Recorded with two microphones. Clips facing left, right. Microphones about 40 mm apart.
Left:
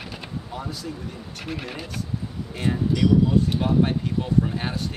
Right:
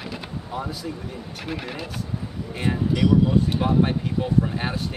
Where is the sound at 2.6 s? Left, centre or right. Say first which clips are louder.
Even; centre.